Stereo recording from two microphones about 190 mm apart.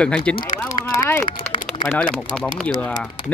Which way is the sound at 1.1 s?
20° left (ahead or behind).